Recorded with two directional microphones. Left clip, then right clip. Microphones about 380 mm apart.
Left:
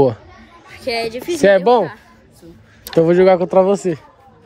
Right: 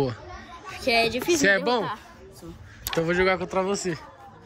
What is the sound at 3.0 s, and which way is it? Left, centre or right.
A man's voice, centre.